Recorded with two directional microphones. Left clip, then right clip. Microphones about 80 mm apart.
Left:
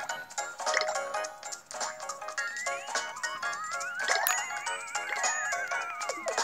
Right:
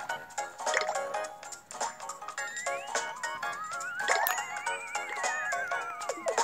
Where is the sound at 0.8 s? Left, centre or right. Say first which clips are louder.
Left 1 dB; centre.